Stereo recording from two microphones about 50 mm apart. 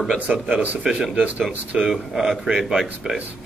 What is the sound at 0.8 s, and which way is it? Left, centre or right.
Speech, centre.